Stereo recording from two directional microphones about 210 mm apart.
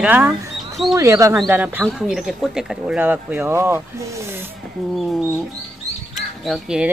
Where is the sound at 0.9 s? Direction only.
15° right (ahead or behind).